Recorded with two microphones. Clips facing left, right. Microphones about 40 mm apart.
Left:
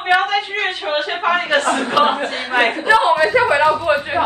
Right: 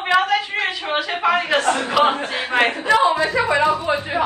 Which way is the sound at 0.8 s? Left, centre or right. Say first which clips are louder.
Left 1 dB; left.